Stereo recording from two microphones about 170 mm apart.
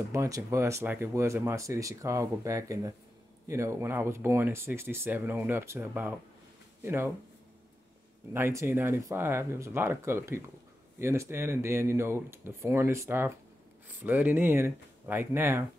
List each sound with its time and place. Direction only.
0.1 s speech: 15° right (ahead or behind)
8.3 s speech: 15° right (ahead or behind)